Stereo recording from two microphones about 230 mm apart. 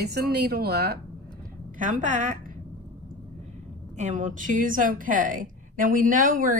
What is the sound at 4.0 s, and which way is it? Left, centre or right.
A woman's voice, right.